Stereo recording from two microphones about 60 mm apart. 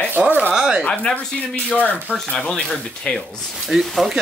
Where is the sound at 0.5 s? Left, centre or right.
Centre.